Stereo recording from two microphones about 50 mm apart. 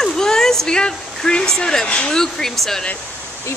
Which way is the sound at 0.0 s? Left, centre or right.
Centre.